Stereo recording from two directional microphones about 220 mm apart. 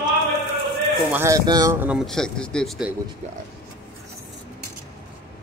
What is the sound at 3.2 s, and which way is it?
Speech, 30° right (ahead or behind).